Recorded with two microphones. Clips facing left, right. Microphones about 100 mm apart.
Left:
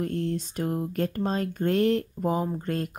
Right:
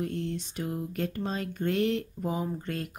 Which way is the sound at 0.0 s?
45° left (ahead or behind).